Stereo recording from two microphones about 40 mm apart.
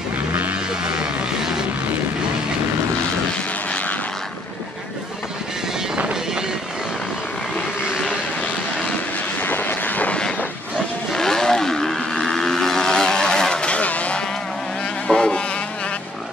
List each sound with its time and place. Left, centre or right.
9.4 s vehicle: left
11.1 s vehicle: centre; by 14.2 s left
15.0 s insect: left